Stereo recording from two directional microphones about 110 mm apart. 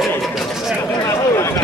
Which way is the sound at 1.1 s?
25° left (ahead or behind).